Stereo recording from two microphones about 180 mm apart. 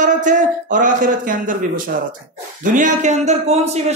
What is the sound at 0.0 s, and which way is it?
A man's voice, 45° right (ahead or behind).